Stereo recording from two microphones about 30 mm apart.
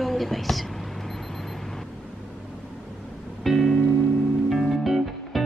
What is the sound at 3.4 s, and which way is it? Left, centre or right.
Music, centre.